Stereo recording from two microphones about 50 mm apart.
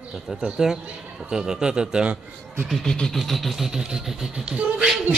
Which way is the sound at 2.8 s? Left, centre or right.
Centre.